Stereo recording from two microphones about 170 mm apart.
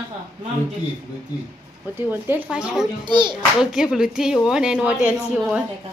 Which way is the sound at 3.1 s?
25° right (ahead or behind).